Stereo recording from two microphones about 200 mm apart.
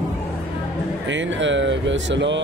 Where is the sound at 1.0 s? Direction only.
65° right (ahead or behind).